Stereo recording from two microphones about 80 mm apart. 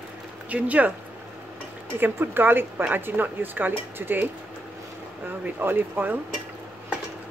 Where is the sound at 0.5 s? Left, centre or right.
Centre.